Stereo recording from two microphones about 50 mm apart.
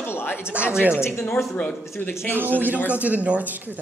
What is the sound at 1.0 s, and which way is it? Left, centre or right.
Speech, left.